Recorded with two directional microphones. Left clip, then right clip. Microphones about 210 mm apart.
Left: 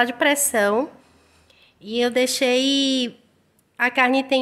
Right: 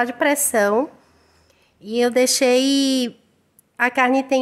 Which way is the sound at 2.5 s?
20° right (ahead or behind).